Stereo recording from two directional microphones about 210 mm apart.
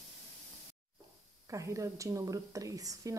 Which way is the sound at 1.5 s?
15° right (ahead or behind).